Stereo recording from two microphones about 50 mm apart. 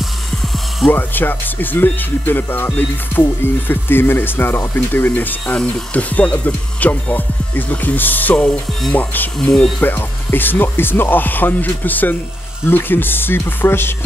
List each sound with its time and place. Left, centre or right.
0.8 s speech: left
9.4 s speech: centre
9.8 s speech: left